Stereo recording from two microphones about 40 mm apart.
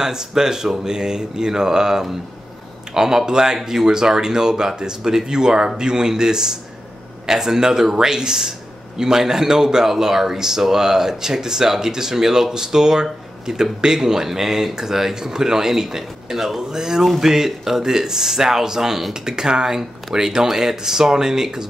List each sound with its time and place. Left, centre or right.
0.0 s a man's voice: centre